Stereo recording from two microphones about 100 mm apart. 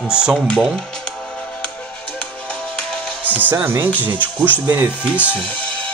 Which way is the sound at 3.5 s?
25° right (ahead or behind).